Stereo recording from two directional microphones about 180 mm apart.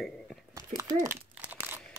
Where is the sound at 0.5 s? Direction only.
20° right (ahead or behind).